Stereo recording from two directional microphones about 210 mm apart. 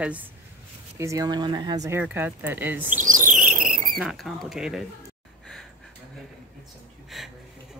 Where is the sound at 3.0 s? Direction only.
40° right (ahead or behind).